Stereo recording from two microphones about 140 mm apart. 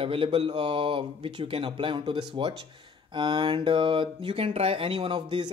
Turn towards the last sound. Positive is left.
turn(degrees=-35)  # may be behind; listen again after turning